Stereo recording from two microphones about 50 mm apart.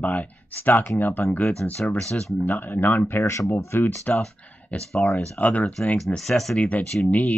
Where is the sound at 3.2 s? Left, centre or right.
Left.